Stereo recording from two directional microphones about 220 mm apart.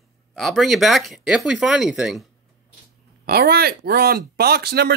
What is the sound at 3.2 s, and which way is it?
Speech, 45° right (ahead or behind).